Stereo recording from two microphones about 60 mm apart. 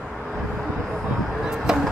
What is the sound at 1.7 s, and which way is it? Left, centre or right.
Chop, centre.